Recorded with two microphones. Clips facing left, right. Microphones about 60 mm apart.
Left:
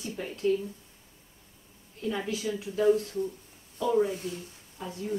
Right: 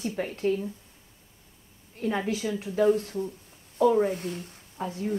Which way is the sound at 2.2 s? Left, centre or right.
Right.